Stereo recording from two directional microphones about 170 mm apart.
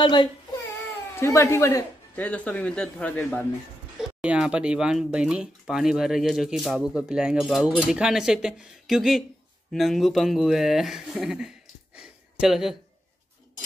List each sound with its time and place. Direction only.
0.0 s speech: 25° left (ahead or behind)
1.1 s a man's voice: 15° left (ahead or behind)
4.2 s speech: 5° right (ahead or behind)